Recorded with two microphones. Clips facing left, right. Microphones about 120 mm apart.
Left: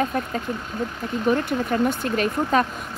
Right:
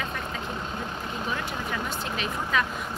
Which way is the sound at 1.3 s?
55° left (ahead or behind).